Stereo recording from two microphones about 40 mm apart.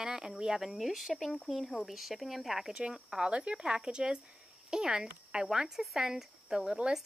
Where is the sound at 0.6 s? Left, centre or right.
Centre.